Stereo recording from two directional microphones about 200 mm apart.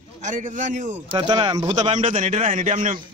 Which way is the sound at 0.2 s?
40° right (ahead or behind).